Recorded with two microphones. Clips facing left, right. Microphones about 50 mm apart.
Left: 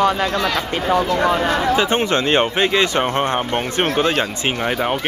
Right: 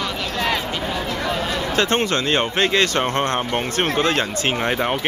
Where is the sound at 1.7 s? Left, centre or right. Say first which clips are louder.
Left 2 dB; centre.